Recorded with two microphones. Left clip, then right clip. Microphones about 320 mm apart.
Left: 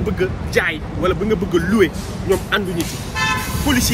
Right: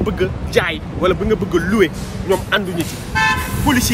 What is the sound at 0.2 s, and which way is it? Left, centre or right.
Speech, centre.